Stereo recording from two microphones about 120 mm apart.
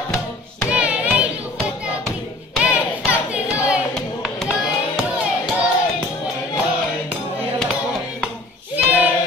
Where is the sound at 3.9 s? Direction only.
Centre (ahead or behind).